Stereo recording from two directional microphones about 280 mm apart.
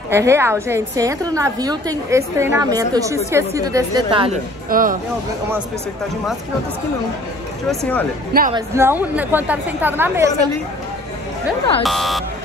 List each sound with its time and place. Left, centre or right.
0.1 s a woman's voice: centre
4.6 s speech: right
7.6 s speech: centre
8.3 s a woman's voice: right
8.5 s a woman's voice: centre
11.8 s speech: centre